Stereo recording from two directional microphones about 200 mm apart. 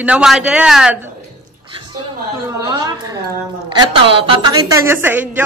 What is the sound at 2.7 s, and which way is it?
A woman's voice, 20° right (ahead or behind).